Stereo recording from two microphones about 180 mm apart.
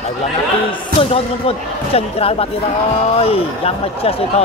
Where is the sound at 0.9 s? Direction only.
30° left (ahead or behind).